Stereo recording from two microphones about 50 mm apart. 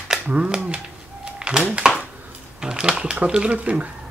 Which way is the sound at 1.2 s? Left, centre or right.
Centre.